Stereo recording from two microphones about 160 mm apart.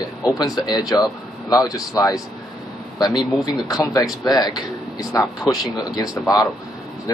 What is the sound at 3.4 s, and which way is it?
Speech, 25° left (ahead or behind).